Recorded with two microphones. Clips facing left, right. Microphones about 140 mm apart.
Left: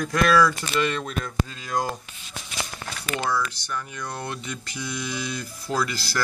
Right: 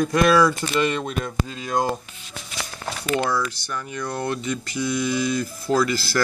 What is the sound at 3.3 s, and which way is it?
Speech, 10° right (ahead or behind).